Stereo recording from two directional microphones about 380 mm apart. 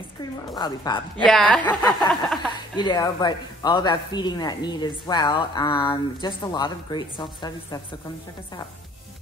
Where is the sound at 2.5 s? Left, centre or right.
Centre.